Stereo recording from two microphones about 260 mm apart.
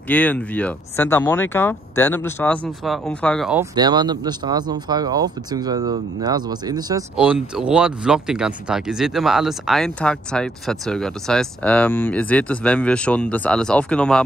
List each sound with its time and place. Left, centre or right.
0.1 s speech: centre
3.7 s speech: centre
7.2 s speech: centre